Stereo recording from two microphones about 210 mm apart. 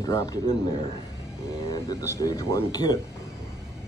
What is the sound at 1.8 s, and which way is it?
Speech, 15° left (ahead or behind).